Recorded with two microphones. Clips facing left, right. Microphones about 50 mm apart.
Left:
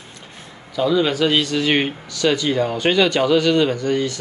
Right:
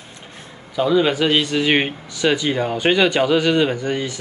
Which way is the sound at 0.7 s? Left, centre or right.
Centre.